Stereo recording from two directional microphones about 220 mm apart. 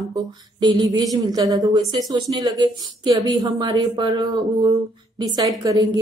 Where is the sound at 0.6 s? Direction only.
20° right (ahead or behind).